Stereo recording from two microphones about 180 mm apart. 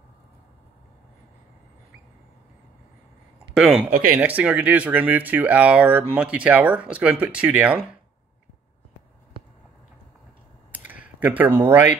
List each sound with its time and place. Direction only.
3.5 s speech: 5° right (ahead or behind)
3.9 s speech: 50° right (ahead or behind)
4.2 s speech: 10° right (ahead or behind)
10.7 s a sound: 10° right (ahead or behind)